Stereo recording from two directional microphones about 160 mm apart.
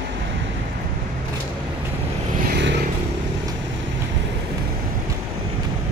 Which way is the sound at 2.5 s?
90° right.